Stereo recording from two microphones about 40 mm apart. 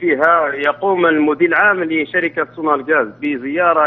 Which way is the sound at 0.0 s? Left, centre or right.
Centre.